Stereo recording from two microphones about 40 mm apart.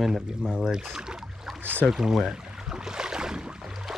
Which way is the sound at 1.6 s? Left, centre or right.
Right.